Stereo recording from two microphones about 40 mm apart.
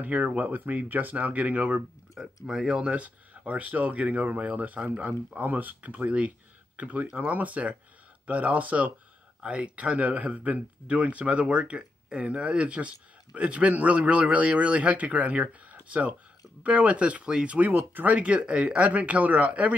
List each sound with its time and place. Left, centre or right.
0.0 s speech: right
2.1 s speech: centre
2.9 s speech: right
18.0 s speech: right